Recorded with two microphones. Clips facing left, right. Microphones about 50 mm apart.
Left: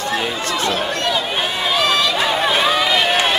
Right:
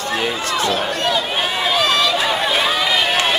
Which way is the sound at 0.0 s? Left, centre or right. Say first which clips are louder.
Even; centre.